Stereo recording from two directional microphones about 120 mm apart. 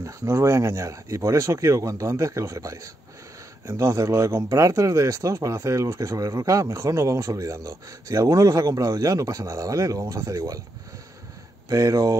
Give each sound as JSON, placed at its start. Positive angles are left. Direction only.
{"t": 0.0, "sound": "speech", "side_deg": -25}
{"t": 11.7, "sound": "speech", "side_deg": -30}